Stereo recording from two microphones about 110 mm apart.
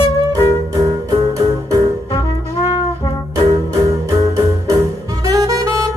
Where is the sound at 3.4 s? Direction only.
35° right (ahead or behind).